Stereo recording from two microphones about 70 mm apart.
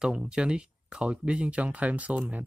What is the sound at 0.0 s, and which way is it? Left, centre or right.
Speech, centre.